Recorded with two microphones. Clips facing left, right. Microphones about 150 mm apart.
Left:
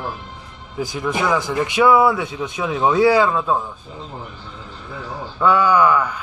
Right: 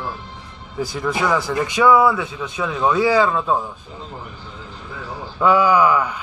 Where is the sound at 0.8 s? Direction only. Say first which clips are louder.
Even; centre (ahead or behind).